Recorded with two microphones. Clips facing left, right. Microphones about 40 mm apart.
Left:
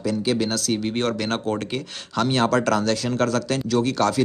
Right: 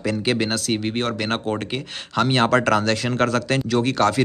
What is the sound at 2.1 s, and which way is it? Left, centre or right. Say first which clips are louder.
Speech: right 2 dB; right.